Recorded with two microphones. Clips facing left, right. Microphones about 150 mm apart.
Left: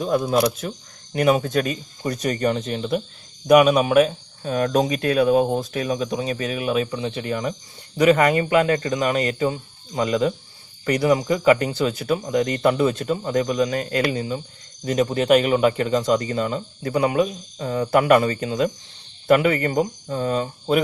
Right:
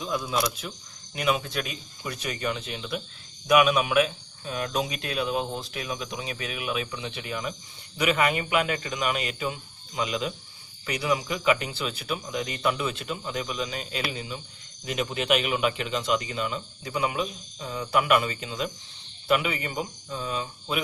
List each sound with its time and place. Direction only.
0.0 s a man's voice: 50° left (ahead or behind)
14.9 s a man's voice: 40° left (ahead or behind)